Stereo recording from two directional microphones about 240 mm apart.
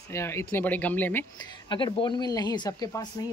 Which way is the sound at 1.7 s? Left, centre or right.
Centre.